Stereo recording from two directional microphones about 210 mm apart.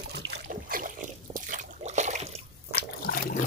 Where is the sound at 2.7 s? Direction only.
45° left (ahead or behind).